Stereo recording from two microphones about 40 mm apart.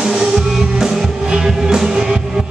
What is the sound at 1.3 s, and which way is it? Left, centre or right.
Music, centre.